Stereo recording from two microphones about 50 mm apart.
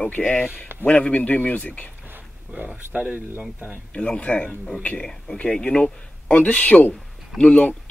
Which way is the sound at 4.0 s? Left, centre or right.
Left.